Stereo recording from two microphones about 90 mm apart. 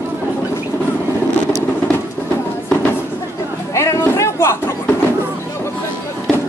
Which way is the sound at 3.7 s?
30° left (ahead or behind).